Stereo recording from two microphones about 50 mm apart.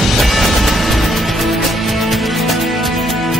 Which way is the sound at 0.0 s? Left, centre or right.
Centre.